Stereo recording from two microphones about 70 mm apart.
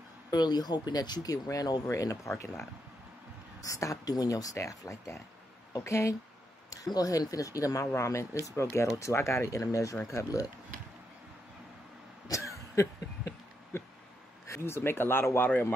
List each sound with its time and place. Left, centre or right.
0.3 s speech: left
3.6 s speech: left
4.1 s speech: left
6.7 s speech: left
12.3 s throat clearing: left
13.7 s a sound: left
14.5 s speech: left